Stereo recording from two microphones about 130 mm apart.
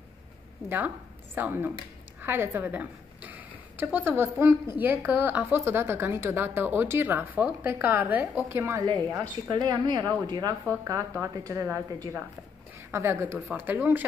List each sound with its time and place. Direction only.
0.7 s a woman's voice: 15° right (ahead or behind)
9.5 s a woman's voice: 35° right (ahead or behind); by 14.0 s 15° right (ahead or behind)